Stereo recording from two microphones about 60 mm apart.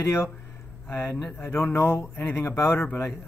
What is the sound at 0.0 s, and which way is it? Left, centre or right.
Speech, left.